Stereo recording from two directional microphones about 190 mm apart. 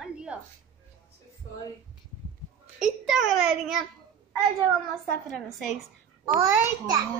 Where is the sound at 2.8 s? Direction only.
Centre (ahead or behind).